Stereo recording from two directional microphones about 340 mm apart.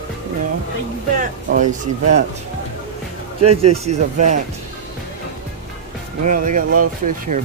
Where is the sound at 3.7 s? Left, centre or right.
Centre.